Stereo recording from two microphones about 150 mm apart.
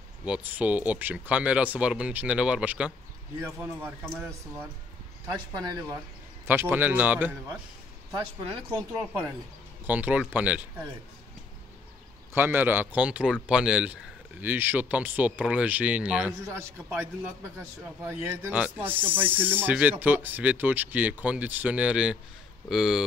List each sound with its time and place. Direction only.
0.2 s speech: 10° right (ahead or behind)
5.6 s speech: 25° right (ahead or behind)
6.4 s speech: 15° right (ahead or behind)
8.4 s speech: 35° right (ahead or behind)
9.8 s speech: 10° right (ahead or behind)
12.4 s speech: 10° right (ahead or behind)